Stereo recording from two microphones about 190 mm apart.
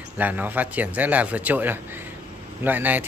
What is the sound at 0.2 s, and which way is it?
A man's voice, 10° right (ahead or behind).